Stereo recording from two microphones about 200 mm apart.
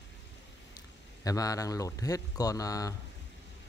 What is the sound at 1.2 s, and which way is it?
Speech, 15° left (ahead or behind).